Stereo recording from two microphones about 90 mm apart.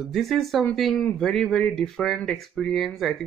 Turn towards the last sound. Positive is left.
turn(degrees=0)  # may be behind; listen again after turning